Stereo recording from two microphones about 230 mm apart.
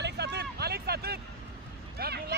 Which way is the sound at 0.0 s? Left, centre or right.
Right.